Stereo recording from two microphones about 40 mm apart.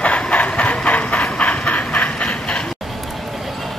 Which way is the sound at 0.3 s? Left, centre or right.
Left.